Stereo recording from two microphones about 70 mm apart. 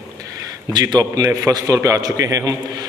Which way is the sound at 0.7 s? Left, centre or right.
Right.